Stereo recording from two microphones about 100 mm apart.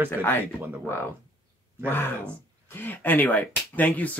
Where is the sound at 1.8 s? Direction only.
20° left (ahead or behind).